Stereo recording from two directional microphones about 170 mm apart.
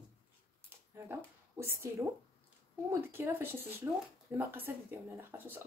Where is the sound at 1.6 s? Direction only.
15° right (ahead or behind).